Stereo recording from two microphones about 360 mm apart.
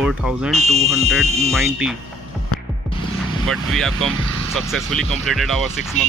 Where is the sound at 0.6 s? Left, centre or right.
Centre.